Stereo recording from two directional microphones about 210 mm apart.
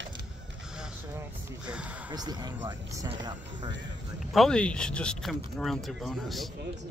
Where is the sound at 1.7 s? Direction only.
5° right (ahead or behind).